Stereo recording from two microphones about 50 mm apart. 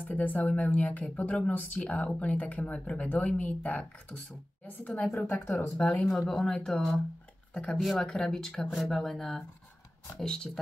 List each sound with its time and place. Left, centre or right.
0.0 s speech: left
5.8 s speech: left
6.0 s speech: centre
7.7 s speech: centre
8.0 s speech: centre